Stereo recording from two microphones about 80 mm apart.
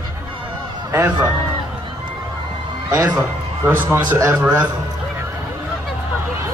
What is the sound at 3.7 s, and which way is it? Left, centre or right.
Speech, right.